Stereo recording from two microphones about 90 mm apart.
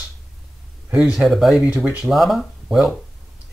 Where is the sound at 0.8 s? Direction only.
10° right (ahead or behind).